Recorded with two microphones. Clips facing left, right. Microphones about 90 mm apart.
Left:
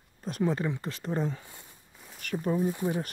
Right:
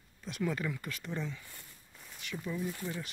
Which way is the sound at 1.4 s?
20° left (ahead or behind).